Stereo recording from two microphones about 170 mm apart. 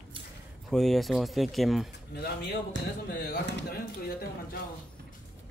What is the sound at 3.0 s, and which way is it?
Speech, 65° left (ahead or behind).